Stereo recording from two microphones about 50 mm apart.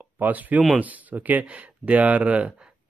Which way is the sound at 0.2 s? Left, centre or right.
Right.